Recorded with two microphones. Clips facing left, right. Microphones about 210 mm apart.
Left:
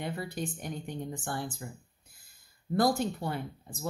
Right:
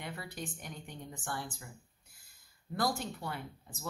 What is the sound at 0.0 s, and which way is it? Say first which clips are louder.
A woman's voice: left 7 dB; 35° left (ahead or behind).